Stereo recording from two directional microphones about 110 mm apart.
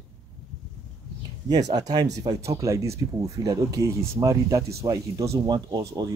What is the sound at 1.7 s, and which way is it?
Speech, 35° right (ahead or behind).